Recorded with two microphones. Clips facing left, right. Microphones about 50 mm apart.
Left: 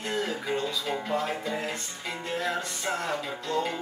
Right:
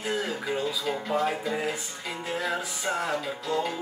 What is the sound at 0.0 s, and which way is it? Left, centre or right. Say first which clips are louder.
Music: right 1 dB; centre.